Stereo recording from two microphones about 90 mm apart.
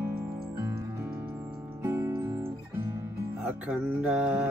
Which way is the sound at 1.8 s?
30° right (ahead or behind).